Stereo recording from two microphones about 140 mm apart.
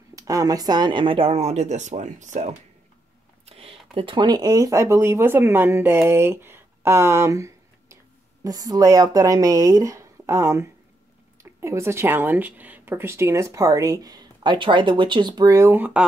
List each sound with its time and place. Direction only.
0.1 s speech: 25° right (ahead or behind); by 2.5 s 60° right (ahead or behind)
3.4 s a woman's voice: 45° right (ahead or behind); by 16.1 s 10° right (ahead or behind)